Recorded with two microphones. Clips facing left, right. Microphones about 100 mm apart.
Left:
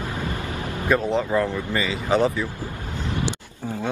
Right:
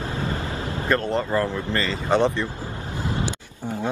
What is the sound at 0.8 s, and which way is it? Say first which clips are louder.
Speech: left 2 dB; 5° left (ahead or behind).